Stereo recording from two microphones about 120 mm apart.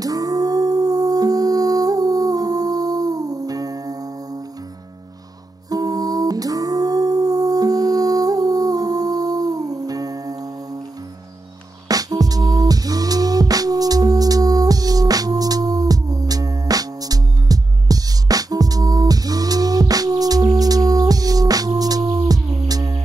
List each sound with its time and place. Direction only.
0.0 s humming: 30° right (ahead or behind)
5.7 s music: 30° right (ahead or behind)
11.9 s music: 30° right (ahead or behind)